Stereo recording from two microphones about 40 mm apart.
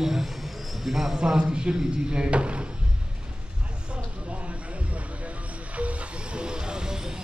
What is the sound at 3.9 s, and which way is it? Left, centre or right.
Basketball bounce, right.